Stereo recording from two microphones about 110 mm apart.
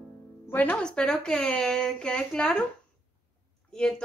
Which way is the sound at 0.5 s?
10° left (ahead or behind).